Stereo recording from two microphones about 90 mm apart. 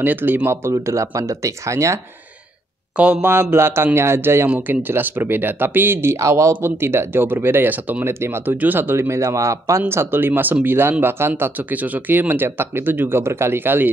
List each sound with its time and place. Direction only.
0.0 s speech: 20° right (ahead or behind)
0.7 s speech: 35° right (ahead or behind)
3.0 s speech: 20° right (ahead or behind)